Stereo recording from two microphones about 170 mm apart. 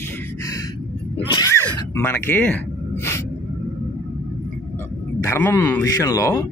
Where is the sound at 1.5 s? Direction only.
15° left (ahead or behind).